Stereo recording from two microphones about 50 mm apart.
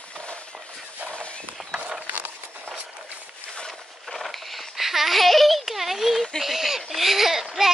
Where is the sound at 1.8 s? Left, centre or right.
Right.